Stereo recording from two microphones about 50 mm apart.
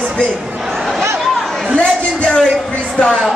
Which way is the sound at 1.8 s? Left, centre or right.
Left.